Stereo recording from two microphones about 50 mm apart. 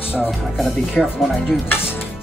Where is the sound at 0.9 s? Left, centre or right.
Centre.